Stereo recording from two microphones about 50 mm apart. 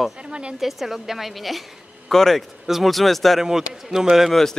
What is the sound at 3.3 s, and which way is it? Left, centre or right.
Speech, centre.